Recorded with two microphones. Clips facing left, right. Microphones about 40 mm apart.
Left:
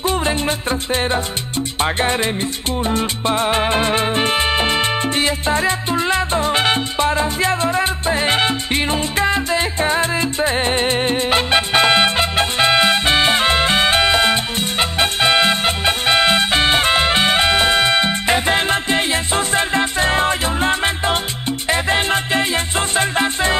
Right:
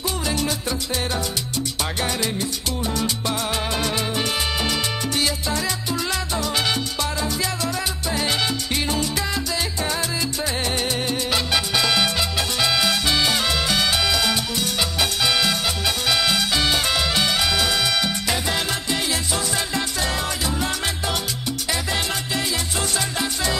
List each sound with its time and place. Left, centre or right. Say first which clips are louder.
0.0 s music: left 6 dB; left
2.8 s salsa music: left 6 dB; left